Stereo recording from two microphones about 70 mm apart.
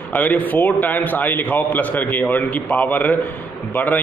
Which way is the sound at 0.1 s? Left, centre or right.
Left.